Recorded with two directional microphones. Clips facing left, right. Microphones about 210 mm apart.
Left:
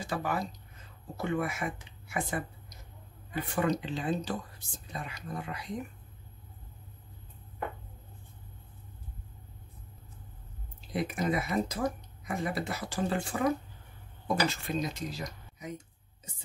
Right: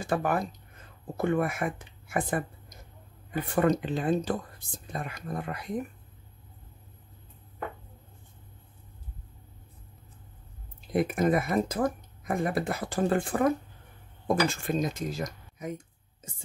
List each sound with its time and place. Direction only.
0.0 s speech: 55° right (ahead or behind)
3.5 s speech: 50° right (ahead or behind)
10.9 s speech: 50° right (ahead or behind)